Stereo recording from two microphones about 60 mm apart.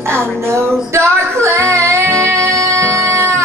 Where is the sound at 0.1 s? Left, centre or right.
Right.